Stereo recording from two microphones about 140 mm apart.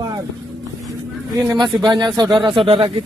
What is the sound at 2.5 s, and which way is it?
Speech, 40° right (ahead or behind).